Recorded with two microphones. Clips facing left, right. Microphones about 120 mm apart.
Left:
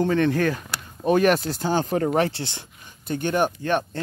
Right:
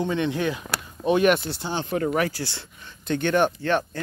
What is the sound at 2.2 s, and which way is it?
Speech, 25° left (ahead or behind).